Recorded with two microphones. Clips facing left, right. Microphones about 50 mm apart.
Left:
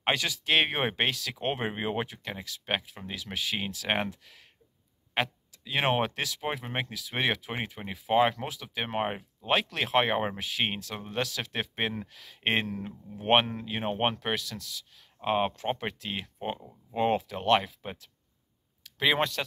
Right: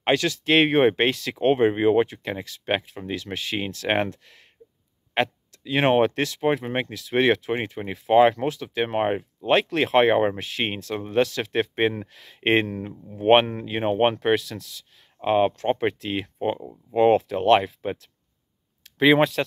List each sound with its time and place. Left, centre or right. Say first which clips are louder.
0.0 s speech: right 7 dB; centre
0.5 s speech: right 9 dB; centre
18.9 s speech: right 9 dB; centre